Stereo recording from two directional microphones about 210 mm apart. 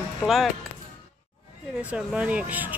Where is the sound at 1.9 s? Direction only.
5° right (ahead or behind).